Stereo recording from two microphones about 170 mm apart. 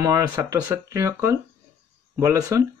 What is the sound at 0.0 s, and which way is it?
Speech, 20° right (ahead or behind).